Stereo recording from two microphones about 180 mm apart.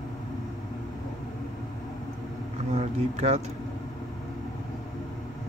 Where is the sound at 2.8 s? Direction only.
40° right (ahead or behind).